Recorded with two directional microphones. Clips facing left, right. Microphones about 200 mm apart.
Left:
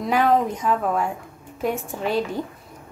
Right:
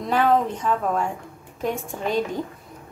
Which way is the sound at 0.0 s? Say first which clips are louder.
Left 1 dB; 10° left (ahead or behind).